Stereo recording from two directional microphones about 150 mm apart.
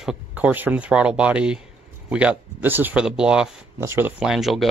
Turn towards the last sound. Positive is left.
turn(degrees=0)  # may be behind; listen again after turning